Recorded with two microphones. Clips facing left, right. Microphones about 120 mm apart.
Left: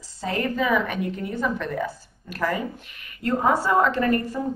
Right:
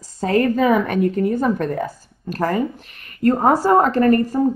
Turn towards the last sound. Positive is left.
turn(degrees=-40)  # may be behind; listen again after turning